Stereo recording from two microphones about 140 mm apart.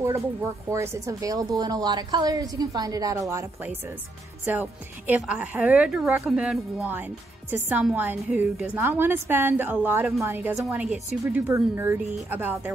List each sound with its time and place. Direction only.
0.7 s a woman's voice: 20° right (ahead or behind)
4.5 s speech: 10° right (ahead or behind)